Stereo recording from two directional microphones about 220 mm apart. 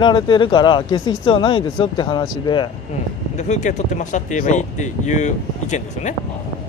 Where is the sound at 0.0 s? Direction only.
20° left (ahead or behind).